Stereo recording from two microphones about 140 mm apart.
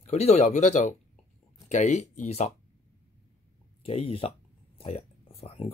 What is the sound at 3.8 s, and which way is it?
Speech, 45° left (ahead or behind).